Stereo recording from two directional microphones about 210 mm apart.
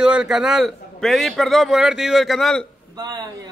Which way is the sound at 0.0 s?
5° right (ahead or behind).